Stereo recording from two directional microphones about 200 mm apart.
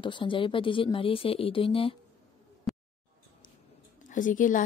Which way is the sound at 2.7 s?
Centre (ahead or behind).